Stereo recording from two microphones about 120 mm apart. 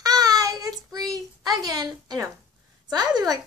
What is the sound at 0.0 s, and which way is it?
Child singing, 30° right (ahead or behind).